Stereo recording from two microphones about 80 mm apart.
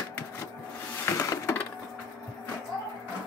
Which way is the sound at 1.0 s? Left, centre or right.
Left.